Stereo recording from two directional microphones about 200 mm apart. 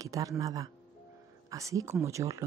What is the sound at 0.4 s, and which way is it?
Speech, 15° right (ahead or behind).